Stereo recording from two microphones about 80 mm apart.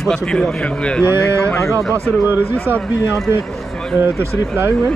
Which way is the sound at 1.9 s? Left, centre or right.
Right.